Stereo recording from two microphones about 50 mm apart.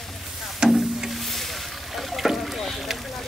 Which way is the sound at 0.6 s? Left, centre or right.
Centre.